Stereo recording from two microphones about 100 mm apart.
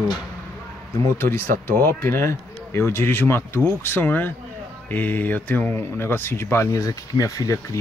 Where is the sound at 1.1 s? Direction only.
25° left (ahead or behind).